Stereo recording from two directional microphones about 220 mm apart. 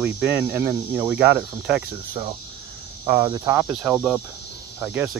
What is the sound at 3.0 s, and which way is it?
Speech, 20° right (ahead or behind).